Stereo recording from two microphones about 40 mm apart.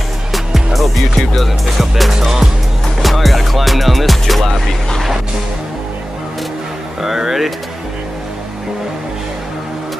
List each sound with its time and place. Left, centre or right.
0.7 s music: centre
2.1 s speech: centre
3.0 s music: centre
7.0 s speech: centre